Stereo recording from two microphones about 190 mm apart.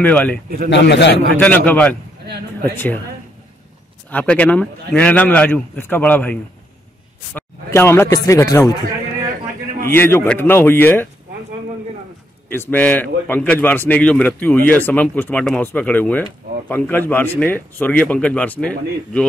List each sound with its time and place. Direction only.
0.0 s speech: 10° left (ahead or behind)
0.7 s a man's voice: 65° left (ahead or behind)
1.4 s speech: 10° left (ahead or behind)
4.1 s speech: 10° left (ahead or behind)
9.8 s speech: 10° left (ahead or behind)
12.4 s speech: 10° left (ahead or behind)